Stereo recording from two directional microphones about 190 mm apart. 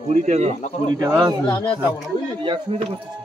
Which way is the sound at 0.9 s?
15° right (ahead or behind).